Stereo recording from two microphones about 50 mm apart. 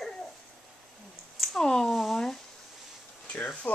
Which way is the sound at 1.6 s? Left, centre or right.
Centre.